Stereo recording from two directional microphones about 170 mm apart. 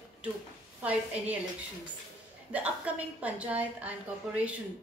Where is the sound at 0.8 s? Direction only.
10° right (ahead or behind).